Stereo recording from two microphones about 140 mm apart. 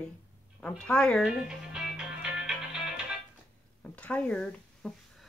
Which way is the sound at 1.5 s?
5° right (ahead or behind).